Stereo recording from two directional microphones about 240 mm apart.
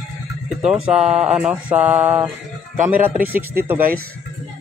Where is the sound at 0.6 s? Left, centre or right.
Centre.